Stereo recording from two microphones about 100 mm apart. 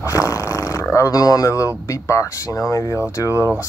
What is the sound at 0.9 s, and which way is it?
Speech, 35° left (ahead or behind).